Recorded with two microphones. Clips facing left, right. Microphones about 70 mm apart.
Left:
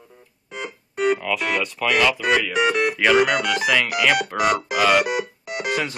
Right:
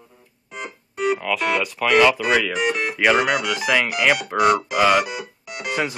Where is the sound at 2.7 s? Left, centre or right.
Centre.